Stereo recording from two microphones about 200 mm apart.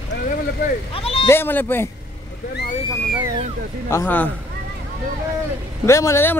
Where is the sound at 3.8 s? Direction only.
10° left (ahead or behind).